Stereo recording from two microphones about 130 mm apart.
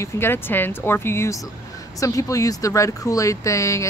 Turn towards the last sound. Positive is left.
turn(degrees=25)  # may be behind; listen again after turning